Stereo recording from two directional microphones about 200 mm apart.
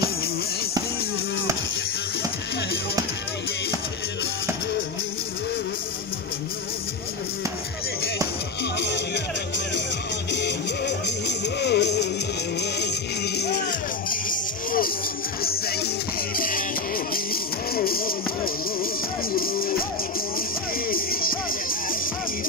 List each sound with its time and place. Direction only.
8.7 s music: 60° left (ahead or behind)
10.3 s music: 60° left (ahead or behind)
20.9 s music: 45° left (ahead or behind)